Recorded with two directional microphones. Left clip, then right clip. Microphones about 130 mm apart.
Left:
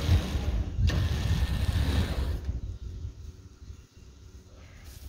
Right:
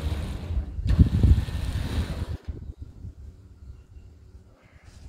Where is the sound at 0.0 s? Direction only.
25° right (ahead or behind).